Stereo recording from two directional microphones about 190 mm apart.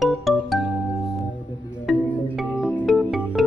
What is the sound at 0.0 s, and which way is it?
Music, centre (ahead or behind).